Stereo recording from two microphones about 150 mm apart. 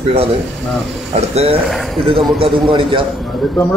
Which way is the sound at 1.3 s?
45° right (ahead or behind).